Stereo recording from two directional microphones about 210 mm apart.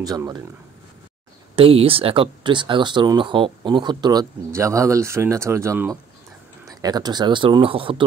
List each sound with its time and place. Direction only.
0.0 s speech: 15° right (ahead or behind)
1.5 s speech: 25° right (ahead or behind)